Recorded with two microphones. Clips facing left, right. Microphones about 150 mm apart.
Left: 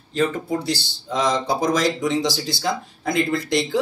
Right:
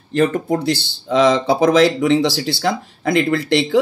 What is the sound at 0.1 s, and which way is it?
Speech, 70° right (ahead or behind).